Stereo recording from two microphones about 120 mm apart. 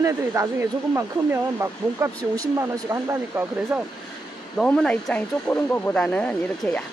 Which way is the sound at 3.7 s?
10° right (ahead or behind).